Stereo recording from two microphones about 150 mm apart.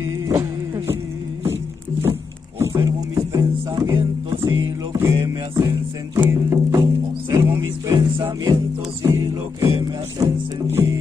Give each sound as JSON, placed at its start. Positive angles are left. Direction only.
{"t": 0.3, "sound": "music", "side_deg": -15}